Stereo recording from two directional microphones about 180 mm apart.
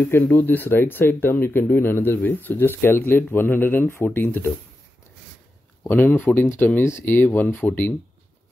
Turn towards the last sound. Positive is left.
turn(degrees=10)  # may be behind; listen again after turning